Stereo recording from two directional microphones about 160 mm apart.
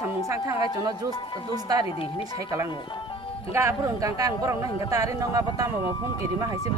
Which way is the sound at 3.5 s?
20° right (ahead or behind).